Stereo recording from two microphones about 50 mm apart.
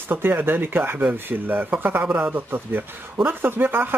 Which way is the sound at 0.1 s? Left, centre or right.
Right.